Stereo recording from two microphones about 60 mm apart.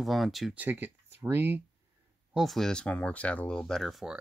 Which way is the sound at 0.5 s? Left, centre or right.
Right.